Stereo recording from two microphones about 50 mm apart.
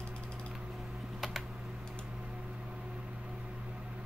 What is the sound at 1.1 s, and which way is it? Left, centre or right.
Typing, centre.